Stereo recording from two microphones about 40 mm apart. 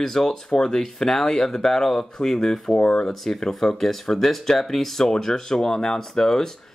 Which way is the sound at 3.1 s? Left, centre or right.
Centre.